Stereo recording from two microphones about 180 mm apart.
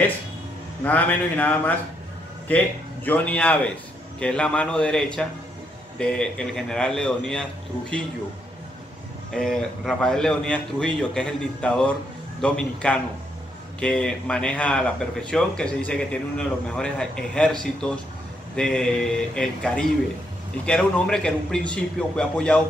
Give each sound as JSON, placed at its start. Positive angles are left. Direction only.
{"t": 0.8, "sound": "speech", "side_deg": 10}
{"t": 3.1, "sound": "a man's voice", "side_deg": 10}
{"t": 9.3, "sound": "a man's voice", "side_deg": 5}